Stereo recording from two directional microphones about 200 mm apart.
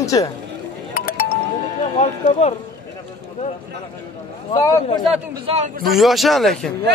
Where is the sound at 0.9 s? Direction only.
45° left (ahead or behind).